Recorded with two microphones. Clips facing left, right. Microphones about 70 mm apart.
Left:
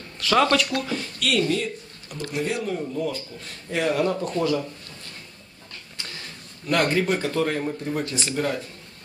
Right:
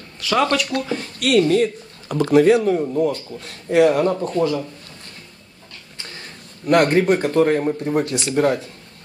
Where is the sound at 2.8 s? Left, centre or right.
Right.